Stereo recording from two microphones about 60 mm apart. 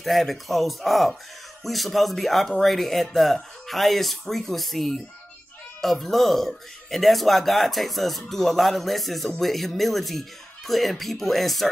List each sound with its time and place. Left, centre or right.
0.0 s speech: centre